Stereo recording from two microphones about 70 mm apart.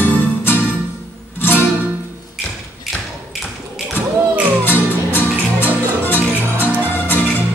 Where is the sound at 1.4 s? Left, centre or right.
Left.